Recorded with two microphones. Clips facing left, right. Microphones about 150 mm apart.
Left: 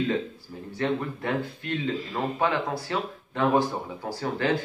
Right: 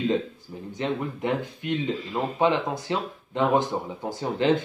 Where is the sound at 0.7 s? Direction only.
20° right (ahead or behind).